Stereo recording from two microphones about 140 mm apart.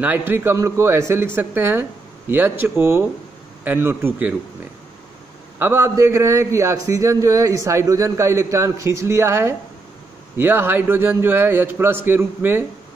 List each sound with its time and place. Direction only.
0.0 s speech: 15° right (ahead or behind)
5.6 s a man's voice: 15° right (ahead or behind)